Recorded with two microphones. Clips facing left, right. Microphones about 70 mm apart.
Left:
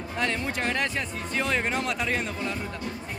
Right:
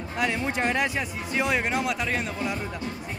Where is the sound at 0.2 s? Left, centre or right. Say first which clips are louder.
Right 2 dB; centre.